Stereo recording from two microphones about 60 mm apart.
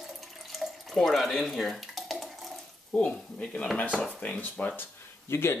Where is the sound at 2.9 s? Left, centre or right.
Centre.